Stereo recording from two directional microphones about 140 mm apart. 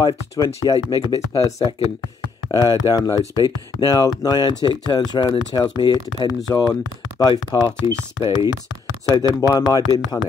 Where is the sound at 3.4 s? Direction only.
30° left (ahead or behind).